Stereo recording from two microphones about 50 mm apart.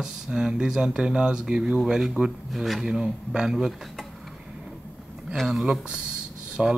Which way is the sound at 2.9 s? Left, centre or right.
Centre.